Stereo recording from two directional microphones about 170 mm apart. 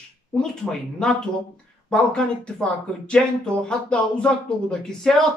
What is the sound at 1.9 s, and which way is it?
Speech, 5° left (ahead or behind).